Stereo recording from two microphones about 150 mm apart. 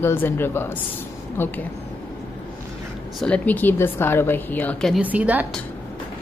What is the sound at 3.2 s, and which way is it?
A woman's voice, 10° left (ahead or behind).